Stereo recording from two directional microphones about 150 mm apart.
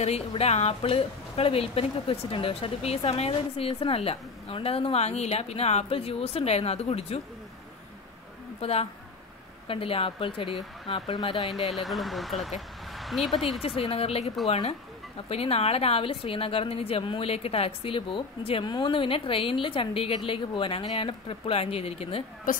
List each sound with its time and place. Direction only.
0.0 s speech: 45° left (ahead or behind)
8.5 s speech: 40° left (ahead or behind)
11.7 s speech: centre (ahead or behind)
13.6 s speech: 40° left (ahead or behind)